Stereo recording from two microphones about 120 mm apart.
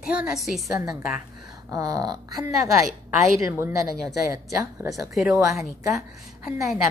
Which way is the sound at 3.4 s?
20° right (ahead or behind).